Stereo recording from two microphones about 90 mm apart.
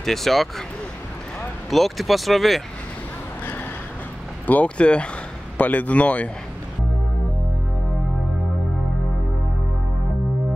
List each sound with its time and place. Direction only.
0.0 s speech: 5° left (ahead or behind)
1.7 s speech: centre (ahead or behind)
4.5 s speech: 15° left (ahead or behind)